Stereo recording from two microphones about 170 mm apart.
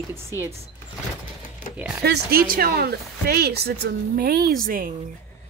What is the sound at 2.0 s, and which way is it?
A woman's voice, 60° right (ahead or behind).